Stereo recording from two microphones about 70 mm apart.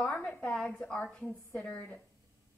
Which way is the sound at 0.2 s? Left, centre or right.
Left.